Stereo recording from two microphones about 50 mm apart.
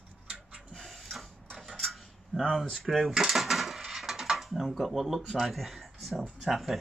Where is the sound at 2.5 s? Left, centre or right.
Centre.